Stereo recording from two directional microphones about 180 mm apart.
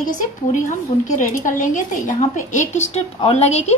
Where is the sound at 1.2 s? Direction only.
45° left (ahead or behind).